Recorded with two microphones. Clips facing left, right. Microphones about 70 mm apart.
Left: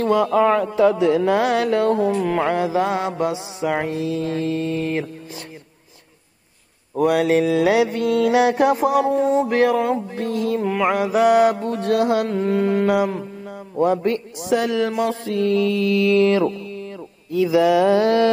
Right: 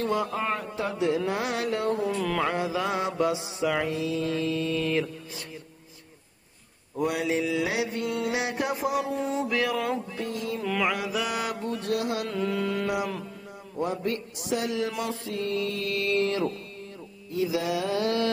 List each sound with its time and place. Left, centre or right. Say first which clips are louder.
0.0 s speech: left 11 dB; left
2.1 s a sound: left 7 dB; left
2.4 s mantra: left 8 dB; left
7.0 s mantra: left 10 dB; left
10.2 s mantra: left 13 dB; left
10.6 s carnatic music: left 4 dB; left
11.0 s mantra: left 14 dB; left
12.3 s carnatic music: left 9 dB; left
14.0 s speech: left 8 dB; left
15.0 s mantra: left 10 dB; left
16.2 s mantra: left 10 dB; left
17.3 s speech: left 11 dB; left